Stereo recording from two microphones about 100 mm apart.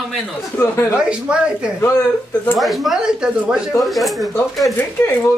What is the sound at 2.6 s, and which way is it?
A woman's voice, centre (ahead or behind).